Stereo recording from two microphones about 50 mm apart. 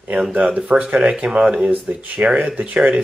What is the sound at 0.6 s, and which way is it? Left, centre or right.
Speech, right.